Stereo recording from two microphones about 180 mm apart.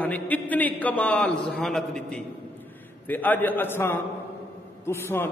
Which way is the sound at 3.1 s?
10° left (ahead or behind).